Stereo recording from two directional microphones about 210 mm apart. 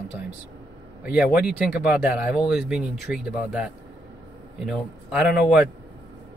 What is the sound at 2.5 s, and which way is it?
A man's voice, 5° right (ahead or behind).